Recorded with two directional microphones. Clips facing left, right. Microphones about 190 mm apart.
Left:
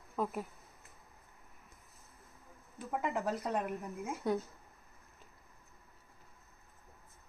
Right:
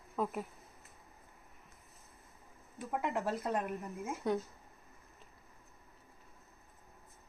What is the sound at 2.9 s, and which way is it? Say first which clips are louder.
Speech: even; centre (ahead or behind).